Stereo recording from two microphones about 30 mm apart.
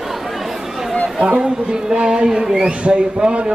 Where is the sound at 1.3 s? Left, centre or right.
Right.